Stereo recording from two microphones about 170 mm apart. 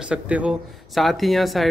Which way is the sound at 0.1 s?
5° right (ahead or behind).